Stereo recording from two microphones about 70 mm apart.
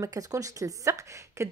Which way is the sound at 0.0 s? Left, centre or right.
Right.